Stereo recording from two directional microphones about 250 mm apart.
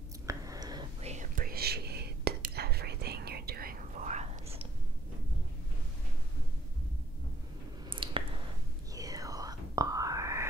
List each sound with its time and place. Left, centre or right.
0.3 s whispering: centre
1.0 s whispering: right
7.9 s a sound: right
8.9 s whispering: centre